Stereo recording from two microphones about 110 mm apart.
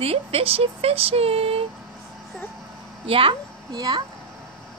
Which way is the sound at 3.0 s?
55° right (ahead or behind).